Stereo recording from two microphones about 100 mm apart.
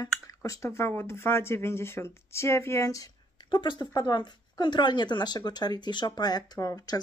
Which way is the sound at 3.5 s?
50° left (ahead or behind).